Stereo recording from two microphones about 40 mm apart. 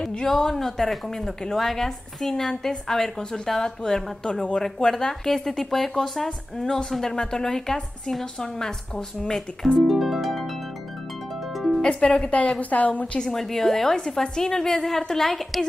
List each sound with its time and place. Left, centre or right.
0.1 s a woman's voice: centre
9.8 s music: centre
11.5 s music: centre
11.8 s a woman's voice: left
13.2 s a woman's voice: centre